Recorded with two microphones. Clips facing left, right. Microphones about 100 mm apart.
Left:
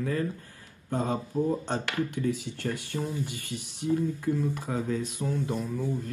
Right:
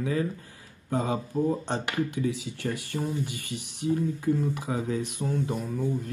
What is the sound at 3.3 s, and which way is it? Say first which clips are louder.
Speech: right 1 dB; 60° right (ahead or behind).